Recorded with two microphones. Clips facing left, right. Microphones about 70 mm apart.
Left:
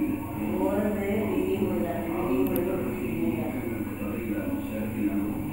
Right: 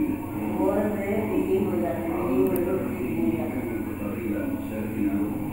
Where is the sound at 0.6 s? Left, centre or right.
Right.